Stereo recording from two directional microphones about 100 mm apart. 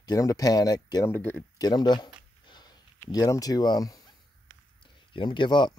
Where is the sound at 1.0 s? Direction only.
25° left (ahead or behind).